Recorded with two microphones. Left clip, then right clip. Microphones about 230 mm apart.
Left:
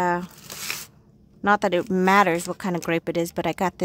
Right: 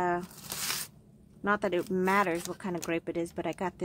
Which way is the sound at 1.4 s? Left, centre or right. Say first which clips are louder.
Left 9 dB; left.